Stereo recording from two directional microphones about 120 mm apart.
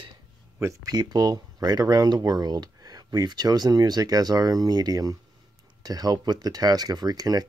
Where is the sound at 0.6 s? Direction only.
30° right (ahead or behind).